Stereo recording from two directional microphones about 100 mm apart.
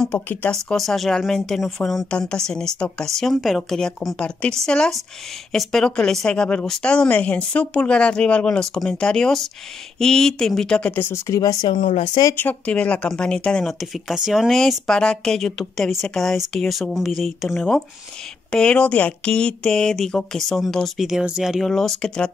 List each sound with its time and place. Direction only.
0.0 s speech: 15° left (ahead or behind)
0.5 s speech: 5° left (ahead or behind); by 11.1 s 20° left (ahead or behind)
11.2 s speech: 35° left (ahead or behind)
11.6 s speech: 50° left (ahead or behind)
12.4 s speech: 15° left (ahead or behind)